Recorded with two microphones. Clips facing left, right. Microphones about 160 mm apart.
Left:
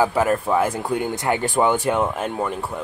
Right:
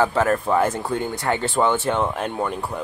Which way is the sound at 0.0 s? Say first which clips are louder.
Even; 10° left (ahead or behind).